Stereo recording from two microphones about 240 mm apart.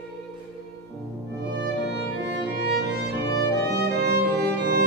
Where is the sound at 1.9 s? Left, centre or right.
Right.